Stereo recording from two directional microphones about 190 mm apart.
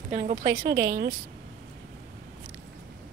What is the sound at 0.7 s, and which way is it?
Speech, 55° right (ahead or behind).